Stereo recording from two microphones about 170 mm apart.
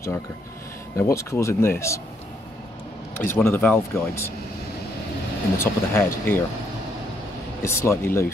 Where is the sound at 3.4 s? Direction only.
15° left (ahead or behind).